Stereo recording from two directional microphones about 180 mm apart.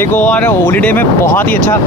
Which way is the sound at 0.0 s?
10° left (ahead or behind).